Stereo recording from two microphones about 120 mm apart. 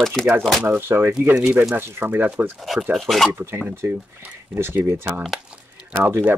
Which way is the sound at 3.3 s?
20° right (ahead or behind).